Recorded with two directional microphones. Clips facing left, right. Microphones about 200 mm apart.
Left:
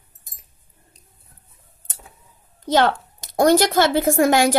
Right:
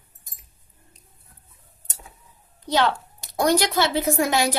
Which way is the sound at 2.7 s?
50° left (ahead or behind).